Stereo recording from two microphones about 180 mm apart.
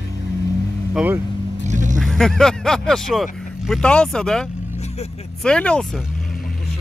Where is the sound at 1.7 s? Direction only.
45° right (ahead or behind).